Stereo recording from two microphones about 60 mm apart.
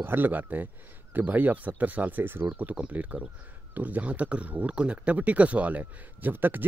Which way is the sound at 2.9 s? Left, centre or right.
Right.